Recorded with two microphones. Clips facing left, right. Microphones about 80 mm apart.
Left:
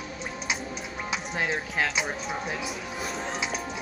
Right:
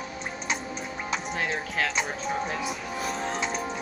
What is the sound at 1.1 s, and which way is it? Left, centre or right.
Music, centre.